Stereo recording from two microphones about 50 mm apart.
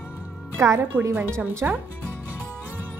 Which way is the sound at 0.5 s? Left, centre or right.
Right.